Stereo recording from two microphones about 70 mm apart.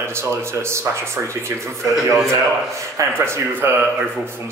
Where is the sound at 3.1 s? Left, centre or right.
Right.